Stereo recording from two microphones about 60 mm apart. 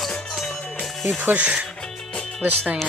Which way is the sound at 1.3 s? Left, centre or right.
Centre.